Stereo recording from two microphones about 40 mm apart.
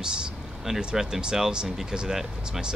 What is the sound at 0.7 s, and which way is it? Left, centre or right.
Speech, centre.